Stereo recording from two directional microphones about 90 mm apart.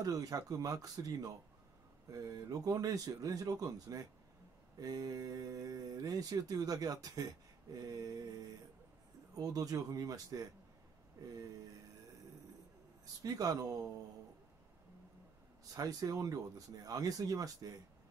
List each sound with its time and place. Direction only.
0.0 s speech: 40° right (ahead or behind)
9.3 s speech: 40° right (ahead or behind)
13.0 s speech: 40° right (ahead or behind)
15.7 s speech: 45° right (ahead or behind)